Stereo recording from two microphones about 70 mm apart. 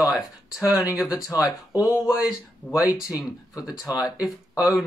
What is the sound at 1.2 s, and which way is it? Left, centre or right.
Speech, left.